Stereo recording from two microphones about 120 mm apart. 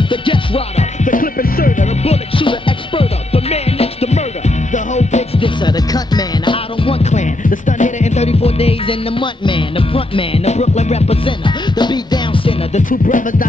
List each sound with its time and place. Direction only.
0.1 s music: 45° left (ahead or behind)
1.7 s music: 90° left
2.3 s music: 45° left (ahead or behind)
4.7 s music: 75° left (ahead or behind)
5.4 s music: 40° left (ahead or behind)
7.1 s music: 85° left; by 11.1 s 65° left (ahead or behind)
11.2 s music: 40° left (ahead or behind)
12.7 s music: 90° left